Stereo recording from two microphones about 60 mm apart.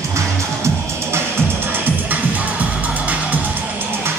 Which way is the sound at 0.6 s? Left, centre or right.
Right.